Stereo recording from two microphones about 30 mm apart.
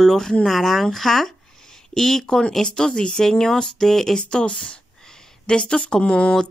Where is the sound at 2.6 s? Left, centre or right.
Left.